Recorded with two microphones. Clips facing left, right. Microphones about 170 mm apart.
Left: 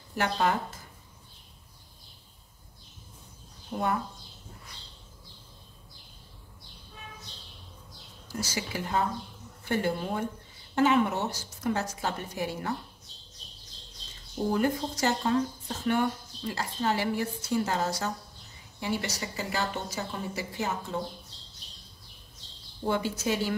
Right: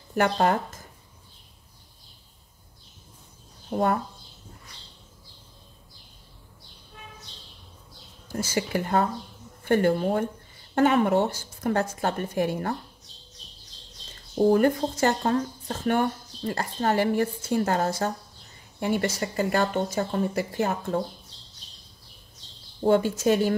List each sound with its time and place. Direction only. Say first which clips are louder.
0.1 s speech: right 5 dB; 50° right (ahead or behind)
3.7 s speech: right 7 dB; 50° right (ahead or behind)
8.3 s speech: right 7 dB; 55° right (ahead or behind)
14.5 s speech: right 4 dB; 55° right (ahead or behind)
22.8 s speech: right 8 dB; 50° right (ahead or behind)